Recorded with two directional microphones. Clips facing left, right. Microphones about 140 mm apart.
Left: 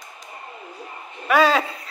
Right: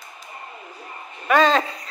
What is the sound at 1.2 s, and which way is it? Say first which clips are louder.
Speech: even; 5° left (ahead or behind).